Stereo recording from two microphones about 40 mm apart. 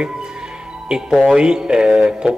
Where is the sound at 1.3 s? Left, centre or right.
Right.